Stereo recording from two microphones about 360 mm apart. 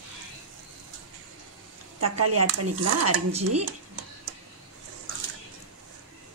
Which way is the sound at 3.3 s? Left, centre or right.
Centre.